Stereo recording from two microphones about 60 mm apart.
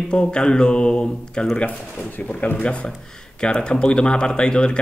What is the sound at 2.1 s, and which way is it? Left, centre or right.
Speech, left.